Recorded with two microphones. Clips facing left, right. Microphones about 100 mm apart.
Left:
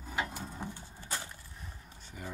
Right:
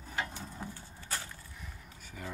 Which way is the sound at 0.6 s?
20° left (ahead or behind).